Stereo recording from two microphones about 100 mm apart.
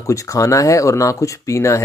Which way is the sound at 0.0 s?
35° left (ahead or behind).